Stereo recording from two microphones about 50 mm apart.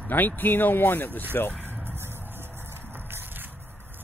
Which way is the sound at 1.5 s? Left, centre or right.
Right.